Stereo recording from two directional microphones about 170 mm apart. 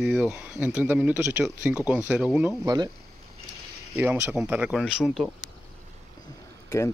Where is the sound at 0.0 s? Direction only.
5° right (ahead or behind).